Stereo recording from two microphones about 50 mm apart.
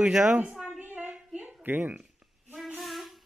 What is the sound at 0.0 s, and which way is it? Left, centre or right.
Speech, centre.